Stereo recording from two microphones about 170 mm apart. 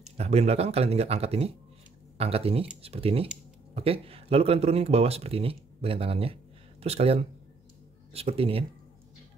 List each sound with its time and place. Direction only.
0.2 s speech: 40° right (ahead or behind)